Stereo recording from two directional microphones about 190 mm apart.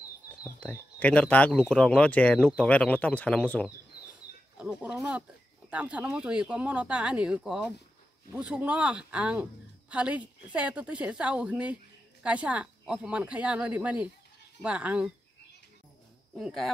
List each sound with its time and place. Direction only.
0.6 s speech: 10° left (ahead or behind)
4.6 s a woman's voice: 5° right (ahead or behind)
16.3 s speech: centre (ahead or behind)